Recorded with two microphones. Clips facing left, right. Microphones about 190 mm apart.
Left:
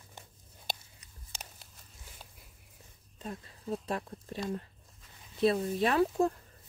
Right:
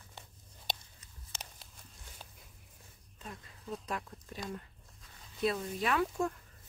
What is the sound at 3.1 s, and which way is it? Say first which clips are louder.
Speech: left 6 dB; 35° left (ahead or behind).